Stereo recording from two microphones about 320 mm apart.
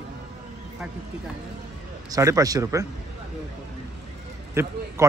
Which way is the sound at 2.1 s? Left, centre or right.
Centre.